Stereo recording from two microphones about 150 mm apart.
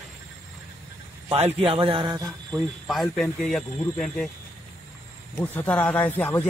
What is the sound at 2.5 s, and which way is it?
Speech, centre (ahead or behind).